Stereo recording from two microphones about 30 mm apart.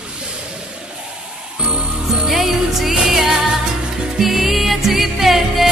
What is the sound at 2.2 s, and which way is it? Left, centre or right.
Music, centre.